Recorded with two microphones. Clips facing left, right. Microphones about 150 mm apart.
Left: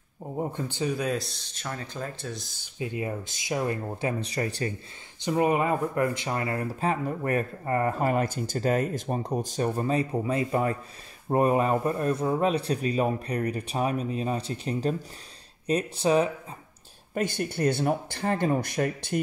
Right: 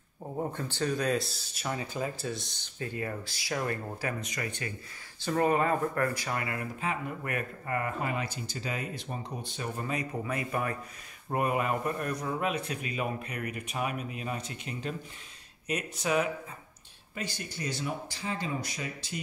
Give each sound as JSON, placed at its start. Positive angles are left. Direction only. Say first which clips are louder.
{"t": 0.2, "sound": "speech", "louder": "left 3 dB", "side_deg": 15}
{"t": 2.8, "sound": "speech", "louder": "left 4 dB", "side_deg": 15}
{"t": 4.2, "sound": "speech", "louder": "left 7 dB", "side_deg": 35}
{"t": 5.2, "sound": "speech", "louder": "left 3 dB", "side_deg": 15}
{"t": 17.1, "sound": "speech", "louder": "left 10 dB", "side_deg": 55}